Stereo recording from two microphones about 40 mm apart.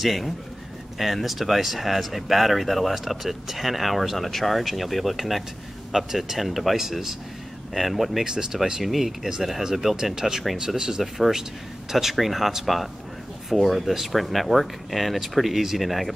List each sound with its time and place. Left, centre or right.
0.0 s speech: centre
8.3 s speech: centre
8.8 s speech: centre